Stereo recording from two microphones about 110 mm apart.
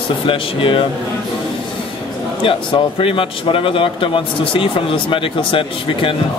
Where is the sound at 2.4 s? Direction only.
55° left (ahead or behind).